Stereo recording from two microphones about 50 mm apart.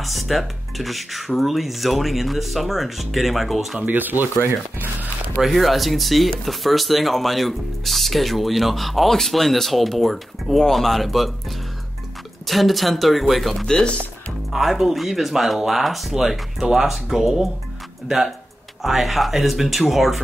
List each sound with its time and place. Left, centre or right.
0.0 s speech: centre
3.8 s speech: right
5.4 s speech: centre
13.7 s speech: centre
14.5 s speech: centre